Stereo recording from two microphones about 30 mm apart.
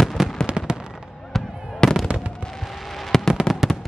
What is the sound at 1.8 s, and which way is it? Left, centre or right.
Fireworks, left.